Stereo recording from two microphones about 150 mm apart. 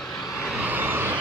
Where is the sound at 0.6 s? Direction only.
10° right (ahead or behind).